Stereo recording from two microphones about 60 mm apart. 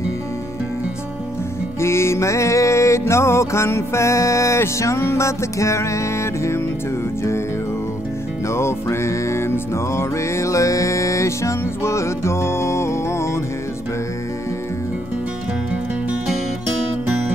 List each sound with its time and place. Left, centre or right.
1.8 s music: left
8.5 s music: left